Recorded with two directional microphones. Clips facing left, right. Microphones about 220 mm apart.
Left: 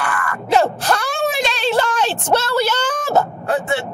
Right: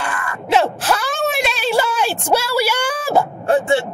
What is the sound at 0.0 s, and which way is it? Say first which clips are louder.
Groan: left 2 dB; 25° right (ahead or behind).